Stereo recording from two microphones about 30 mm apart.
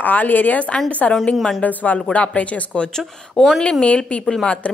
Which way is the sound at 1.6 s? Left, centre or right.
Left.